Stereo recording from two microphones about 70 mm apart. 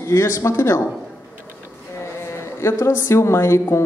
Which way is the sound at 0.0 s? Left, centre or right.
Left.